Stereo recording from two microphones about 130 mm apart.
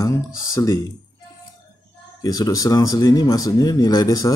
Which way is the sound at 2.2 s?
30° left (ahead or behind).